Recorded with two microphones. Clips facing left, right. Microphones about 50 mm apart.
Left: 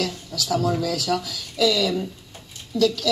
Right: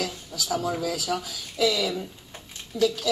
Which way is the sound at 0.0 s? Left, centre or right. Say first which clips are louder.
Left 4 dB; left.